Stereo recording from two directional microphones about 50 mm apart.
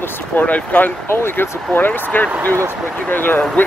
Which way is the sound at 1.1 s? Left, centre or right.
Left.